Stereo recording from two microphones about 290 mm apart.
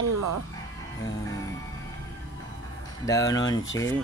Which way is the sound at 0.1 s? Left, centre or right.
Right.